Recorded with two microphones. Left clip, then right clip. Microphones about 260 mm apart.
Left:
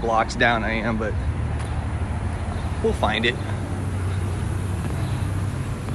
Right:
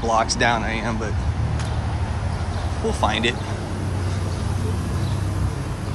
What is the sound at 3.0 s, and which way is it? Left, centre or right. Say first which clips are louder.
Speech: right 2 dB; centre.